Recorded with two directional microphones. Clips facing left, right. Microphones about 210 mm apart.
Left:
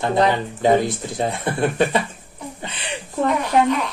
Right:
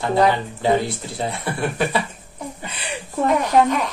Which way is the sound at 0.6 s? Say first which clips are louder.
Left 3 dB; 20° left (ahead or behind).